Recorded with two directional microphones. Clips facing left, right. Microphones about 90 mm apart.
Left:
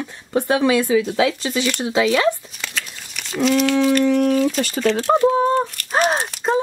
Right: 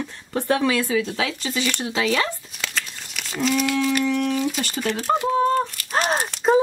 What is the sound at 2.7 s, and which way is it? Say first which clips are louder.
Crumpling: left 1 dB; centre (ahead or behind).